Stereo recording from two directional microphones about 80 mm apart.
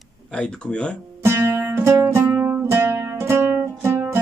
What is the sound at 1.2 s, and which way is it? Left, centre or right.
Music, right.